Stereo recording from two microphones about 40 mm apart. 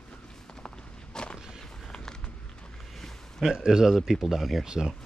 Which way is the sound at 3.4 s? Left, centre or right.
Centre.